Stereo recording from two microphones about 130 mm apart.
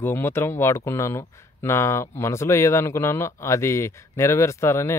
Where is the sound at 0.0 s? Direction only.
15° left (ahead or behind).